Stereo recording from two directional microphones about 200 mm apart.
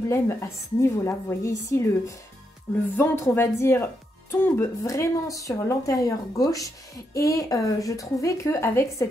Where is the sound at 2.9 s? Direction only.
10° left (ahead or behind).